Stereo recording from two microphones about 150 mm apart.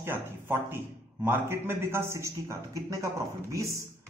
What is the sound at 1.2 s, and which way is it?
A man's voice, 15° right (ahead or behind).